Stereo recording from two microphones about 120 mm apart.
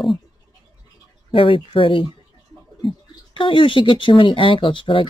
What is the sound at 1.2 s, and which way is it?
Speech, 45° left (ahead or behind).